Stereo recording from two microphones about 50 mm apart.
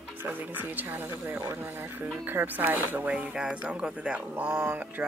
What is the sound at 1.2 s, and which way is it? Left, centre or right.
Speech, right.